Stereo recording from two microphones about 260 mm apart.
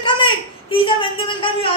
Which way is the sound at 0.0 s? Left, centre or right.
Centre.